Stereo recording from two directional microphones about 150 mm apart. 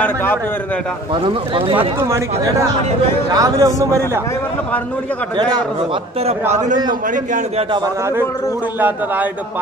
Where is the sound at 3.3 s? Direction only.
25° right (ahead or behind).